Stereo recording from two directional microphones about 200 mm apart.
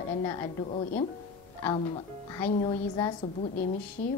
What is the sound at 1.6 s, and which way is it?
A woman's voice, 20° left (ahead or behind).